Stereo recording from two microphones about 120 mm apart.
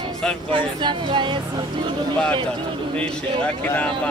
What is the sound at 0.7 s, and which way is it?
Speech, 45° right (ahead or behind).